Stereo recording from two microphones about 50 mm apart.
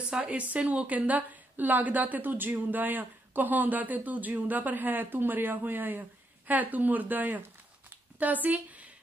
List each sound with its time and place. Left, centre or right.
0.1 s a woman's voice: right